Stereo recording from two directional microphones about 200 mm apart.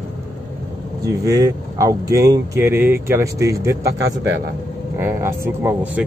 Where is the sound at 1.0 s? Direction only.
15° right (ahead or behind).